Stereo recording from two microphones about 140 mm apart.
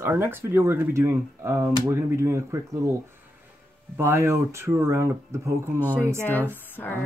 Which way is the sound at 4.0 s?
20° right (ahead or behind).